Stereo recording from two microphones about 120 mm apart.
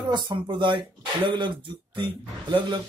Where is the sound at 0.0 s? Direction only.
40° right (ahead or behind).